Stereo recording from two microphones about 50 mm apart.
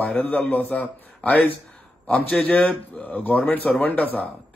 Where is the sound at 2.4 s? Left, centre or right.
Left.